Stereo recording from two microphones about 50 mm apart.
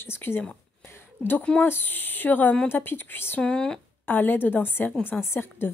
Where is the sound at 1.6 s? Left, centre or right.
Left.